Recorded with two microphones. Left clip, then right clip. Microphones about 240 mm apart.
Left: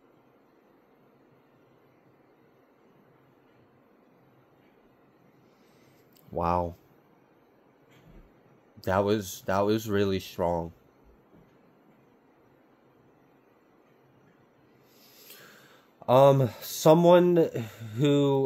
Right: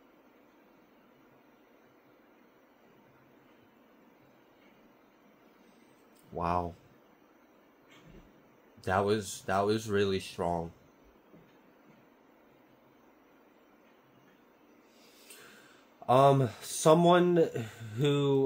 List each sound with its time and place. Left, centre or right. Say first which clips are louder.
6.3 s speech: left 5 dB; left
8.8 s speech: left 3 dB; left
16.1 s speech: left 4 dB; left